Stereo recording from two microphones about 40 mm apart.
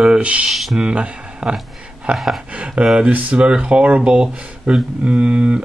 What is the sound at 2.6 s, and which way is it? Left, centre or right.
Speech, right.